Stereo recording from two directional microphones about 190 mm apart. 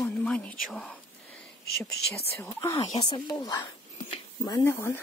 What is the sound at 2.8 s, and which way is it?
Speech, 25° left (ahead or behind).